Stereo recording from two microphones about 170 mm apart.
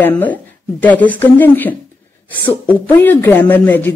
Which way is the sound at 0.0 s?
10° left (ahead or behind).